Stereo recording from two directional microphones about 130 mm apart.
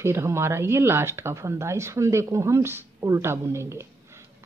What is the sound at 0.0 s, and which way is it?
Speech, 20° right (ahead or behind).